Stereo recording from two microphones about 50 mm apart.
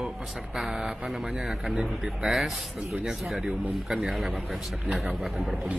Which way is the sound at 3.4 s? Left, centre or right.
Centre.